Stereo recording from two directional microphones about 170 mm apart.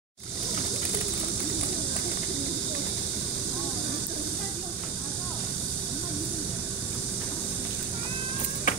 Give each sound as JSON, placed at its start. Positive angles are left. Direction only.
{"t": 8.7, "sound": "music", "side_deg": 50}